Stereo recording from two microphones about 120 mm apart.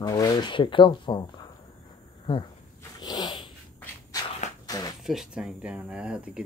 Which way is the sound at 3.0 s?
35° left (ahead or behind).